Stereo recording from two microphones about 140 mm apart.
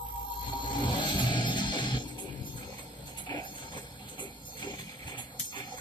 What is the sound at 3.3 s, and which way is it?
Ratchet, 35° left (ahead or behind).